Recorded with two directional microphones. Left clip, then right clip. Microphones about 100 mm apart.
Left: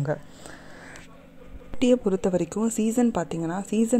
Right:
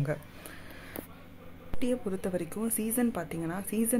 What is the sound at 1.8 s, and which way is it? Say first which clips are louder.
A woman's voice: left 11 dB; 70° left (ahead or behind).